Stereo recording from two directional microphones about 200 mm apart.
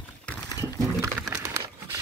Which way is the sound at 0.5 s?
15° right (ahead or behind).